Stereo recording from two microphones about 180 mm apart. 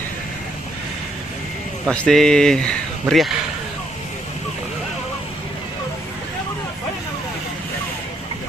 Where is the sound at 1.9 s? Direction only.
5° left (ahead or behind).